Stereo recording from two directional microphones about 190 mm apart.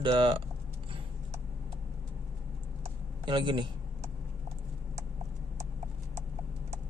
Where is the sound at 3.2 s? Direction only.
25° right (ahead or behind).